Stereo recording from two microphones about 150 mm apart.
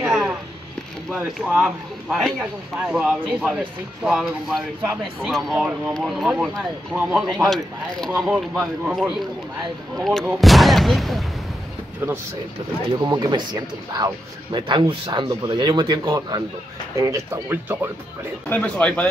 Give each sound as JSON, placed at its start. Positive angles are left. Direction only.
{"t": 0.0, "sound": "a sound", "side_deg": -5}
{"t": 1.2, "sound": "speech", "side_deg": -5}
{"t": 13.0, "sound": "speech", "side_deg": -25}
{"t": 18.5, "sound": "speech", "side_deg": 10}